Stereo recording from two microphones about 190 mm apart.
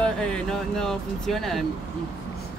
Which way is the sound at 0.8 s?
Centre (ahead or behind).